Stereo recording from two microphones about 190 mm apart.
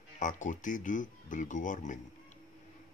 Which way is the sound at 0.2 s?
40° left (ahead or behind).